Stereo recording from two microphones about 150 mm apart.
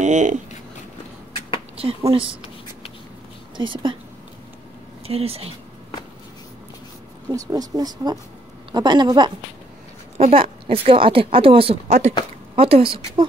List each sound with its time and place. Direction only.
0.0 s speech: 55° right (ahead or behind)
1.8 s a woman's voice: 40° right (ahead or behind)
3.5 s a woman's voice: 35° right (ahead or behind)
5.0 s a woman's voice: 40° right (ahead or behind)
7.2 s speech: 25° right (ahead or behind)
10.1 s a woman's voice: 40° right (ahead or behind)